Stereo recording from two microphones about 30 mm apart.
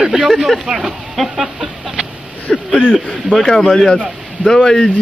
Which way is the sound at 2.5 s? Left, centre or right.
Centre.